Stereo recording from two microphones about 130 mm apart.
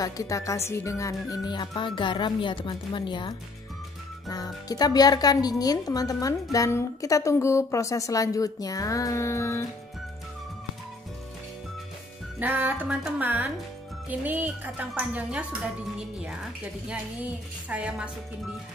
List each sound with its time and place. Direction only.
0.0 s a woman's voice: 25° left (ahead or behind)
12.4 s speech: 15° right (ahead or behind)
17.6 s speech: 10° right (ahead or behind)